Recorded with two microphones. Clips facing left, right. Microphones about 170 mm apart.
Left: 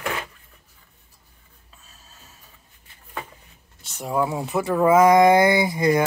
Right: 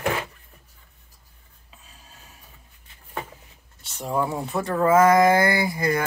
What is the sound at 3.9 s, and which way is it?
Speech, 5° left (ahead or behind).